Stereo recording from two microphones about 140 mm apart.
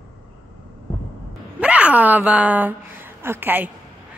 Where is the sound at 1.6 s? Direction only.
10° right (ahead or behind).